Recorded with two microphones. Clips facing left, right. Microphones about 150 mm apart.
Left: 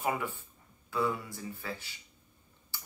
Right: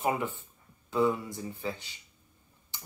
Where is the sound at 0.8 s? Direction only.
20° right (ahead or behind).